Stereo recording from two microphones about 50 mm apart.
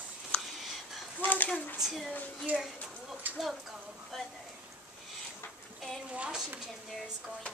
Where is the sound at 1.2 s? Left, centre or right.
Left.